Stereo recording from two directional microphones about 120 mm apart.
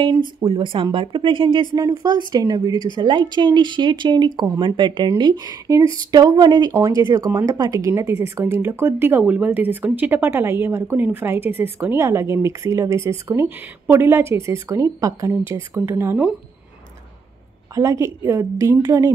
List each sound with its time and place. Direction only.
0.2 s speech: 45° right (ahead or behind); by 16.2 s 20° right (ahead or behind)
17.7 s speech: 25° right (ahead or behind)